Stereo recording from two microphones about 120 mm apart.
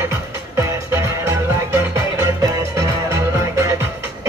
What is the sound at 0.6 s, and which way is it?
Music, 25° right (ahead or behind).